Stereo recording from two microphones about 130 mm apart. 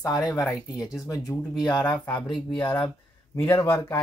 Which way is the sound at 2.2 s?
35° left (ahead or behind).